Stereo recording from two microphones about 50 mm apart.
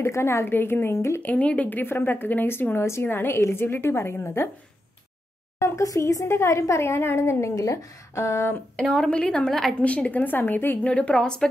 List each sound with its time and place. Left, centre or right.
0.0 s speech: left
0.5 s a woman's voice: left
1.2 s a woman's voice: left
1.8 s a woman's voice: left
3.1 s a woman's voice: left
5.6 s speech: left
8.9 s a woman's voice: centre
9.5 s a woman's voice: centre
9.8 s a woman's voice: left
10.2 s a woman's voice: left
10.8 s a woman's voice: left